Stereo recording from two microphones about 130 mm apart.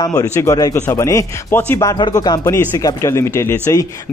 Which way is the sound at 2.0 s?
30° left (ahead or behind).